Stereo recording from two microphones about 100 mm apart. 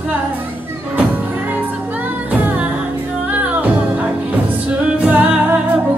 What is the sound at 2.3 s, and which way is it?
Music, 15° right (ahead or behind).